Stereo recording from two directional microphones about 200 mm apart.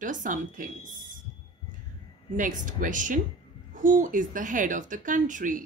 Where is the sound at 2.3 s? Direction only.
40° right (ahead or behind).